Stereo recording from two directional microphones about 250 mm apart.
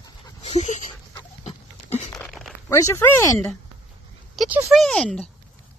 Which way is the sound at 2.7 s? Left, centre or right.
Centre.